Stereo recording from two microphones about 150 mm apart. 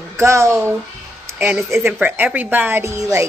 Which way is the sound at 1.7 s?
15° right (ahead or behind).